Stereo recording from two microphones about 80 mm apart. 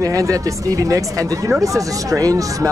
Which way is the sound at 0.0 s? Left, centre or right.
Right.